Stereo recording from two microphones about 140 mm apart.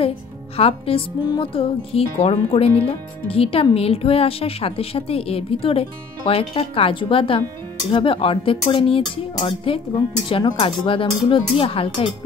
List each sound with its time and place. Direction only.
0.6 s a woman's voice: 40° left (ahead or behind)